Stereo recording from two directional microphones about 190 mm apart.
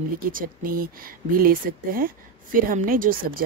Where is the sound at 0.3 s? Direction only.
50° right (ahead or behind).